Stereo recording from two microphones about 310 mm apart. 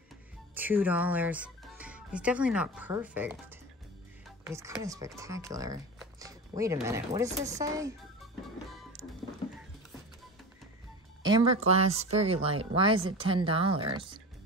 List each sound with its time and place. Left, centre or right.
0.6 s speech: centre
11.2 s speech: centre